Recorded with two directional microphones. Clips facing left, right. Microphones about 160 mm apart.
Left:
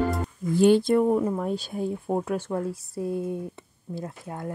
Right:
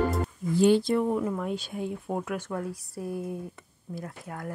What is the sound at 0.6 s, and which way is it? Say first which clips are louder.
Speech: left 3 dB; 55° left (ahead or behind).